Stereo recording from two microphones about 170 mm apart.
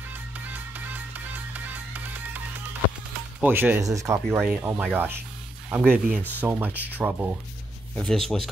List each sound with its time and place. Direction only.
0.5 s music: 10° right (ahead or behind)
3.3 s speech: 10° right (ahead or behind)
7.9 s speech: 5° left (ahead or behind)